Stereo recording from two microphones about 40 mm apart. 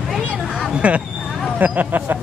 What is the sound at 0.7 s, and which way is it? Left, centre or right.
Speech, right.